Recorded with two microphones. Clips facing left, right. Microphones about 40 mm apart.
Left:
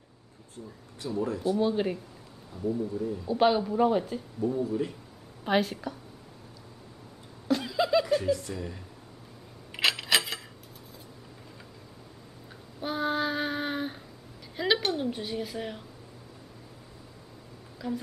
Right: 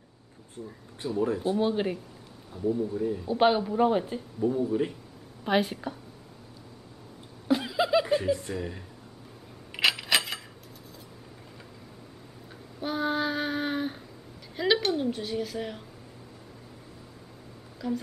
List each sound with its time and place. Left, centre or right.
0.6 s speech: centre
1.2 s speech: right
2.5 s a man's voice: right
3.3 s speech: centre
4.6 s speech: right
5.4 s speech: centre
7.4 s chuckle: centre
8.5 s speech: centre
9.8 s a sound: centre
12.8 s child singing: centre
14.6 s a sound: centre
17.8 s speech: centre